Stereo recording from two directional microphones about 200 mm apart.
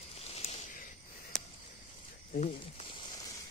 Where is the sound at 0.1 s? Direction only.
30° left (ahead or behind).